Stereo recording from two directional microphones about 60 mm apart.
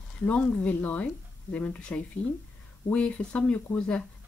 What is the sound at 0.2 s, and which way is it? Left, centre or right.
Speech, left.